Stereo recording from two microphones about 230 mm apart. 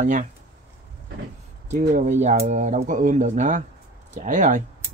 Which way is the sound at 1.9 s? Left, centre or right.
Right.